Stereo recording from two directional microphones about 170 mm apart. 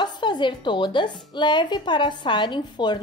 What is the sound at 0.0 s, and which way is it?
A woman's voice, 25° left (ahead or behind).